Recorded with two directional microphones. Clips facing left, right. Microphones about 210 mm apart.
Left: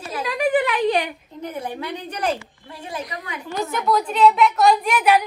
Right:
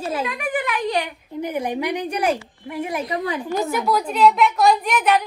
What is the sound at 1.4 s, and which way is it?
A woman's voice, 15° right (ahead or behind).